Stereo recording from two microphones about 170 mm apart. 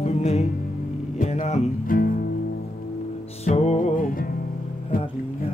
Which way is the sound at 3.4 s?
40° left (ahead or behind).